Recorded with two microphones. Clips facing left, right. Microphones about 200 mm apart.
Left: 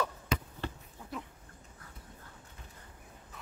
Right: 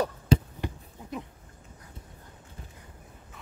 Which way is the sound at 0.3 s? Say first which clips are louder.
Right 13 dB; 30° right (ahead or behind).